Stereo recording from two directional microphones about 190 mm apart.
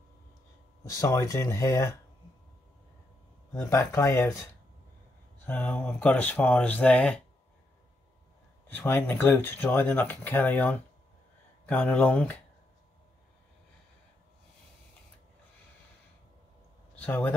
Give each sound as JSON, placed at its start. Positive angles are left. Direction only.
{"t": 0.8, "sound": "speech", "side_deg": 15}
{"t": 3.5, "sound": "speech", "side_deg": 15}
{"t": 5.4, "sound": "speech", "side_deg": 10}
{"t": 8.6, "sound": "speech", "side_deg": 10}
{"t": 16.9, "sound": "speech", "side_deg": 10}